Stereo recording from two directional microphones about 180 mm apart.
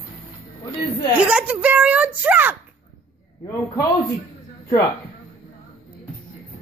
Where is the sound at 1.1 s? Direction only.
10° right (ahead or behind).